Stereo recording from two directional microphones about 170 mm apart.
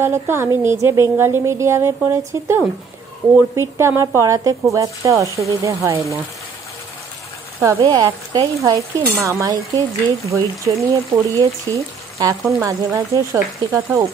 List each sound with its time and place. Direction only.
0.0 s speech: 15° right (ahead or behind)
7.6 s speech: 20° right (ahead or behind)